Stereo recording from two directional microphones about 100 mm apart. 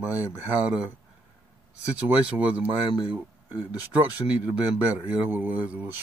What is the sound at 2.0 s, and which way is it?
Speech, 15° right (ahead or behind).